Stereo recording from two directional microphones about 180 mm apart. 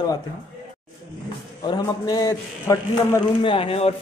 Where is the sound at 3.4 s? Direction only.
30° left (ahead or behind).